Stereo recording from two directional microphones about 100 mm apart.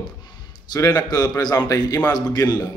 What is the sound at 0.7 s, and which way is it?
A man's voice, 30° left (ahead or behind).